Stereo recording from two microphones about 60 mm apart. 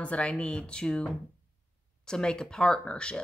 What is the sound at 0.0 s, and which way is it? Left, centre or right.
A woman's voice, centre.